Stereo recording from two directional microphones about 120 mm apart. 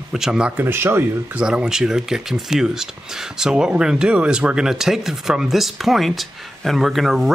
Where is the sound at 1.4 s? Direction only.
5° right (ahead or behind).